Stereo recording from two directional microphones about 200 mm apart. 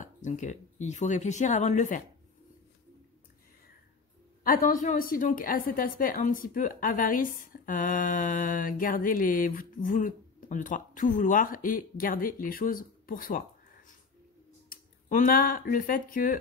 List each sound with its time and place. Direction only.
0.0 s speech: 40° left (ahead or behind)
4.5 s a woman's voice: 40° left (ahead or behind)
14.7 s speech: 45° left (ahead or behind)